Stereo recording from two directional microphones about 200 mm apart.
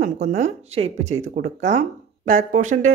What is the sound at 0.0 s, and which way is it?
Speech, 35° right (ahead or behind).